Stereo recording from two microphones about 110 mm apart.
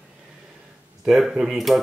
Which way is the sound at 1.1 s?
5° right (ahead or behind).